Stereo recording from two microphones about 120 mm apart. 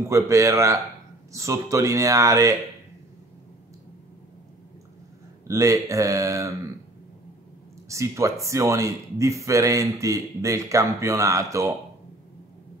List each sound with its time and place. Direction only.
0.0 s speech: 25° right (ahead or behind)
5.5 s speech: 25° right (ahead or behind)
7.9 s speech: 25° right (ahead or behind)